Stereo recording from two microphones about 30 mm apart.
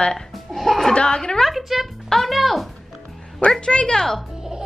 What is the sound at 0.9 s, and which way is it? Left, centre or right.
Speech, left.